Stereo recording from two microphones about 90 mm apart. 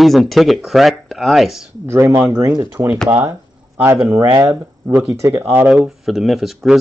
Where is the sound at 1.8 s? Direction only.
30° right (ahead or behind).